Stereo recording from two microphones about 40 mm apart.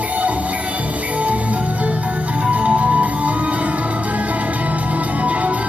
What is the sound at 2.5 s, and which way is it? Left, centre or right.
Music, right.